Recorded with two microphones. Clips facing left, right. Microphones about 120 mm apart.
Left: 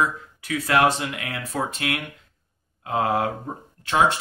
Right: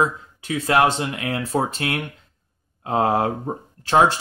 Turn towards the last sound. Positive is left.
turn(degrees=-35)  # may be behind; listen again after turning